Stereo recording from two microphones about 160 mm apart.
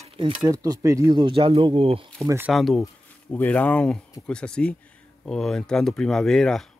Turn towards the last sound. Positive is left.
turn(degrees=5)  # may be behind; listen again after turning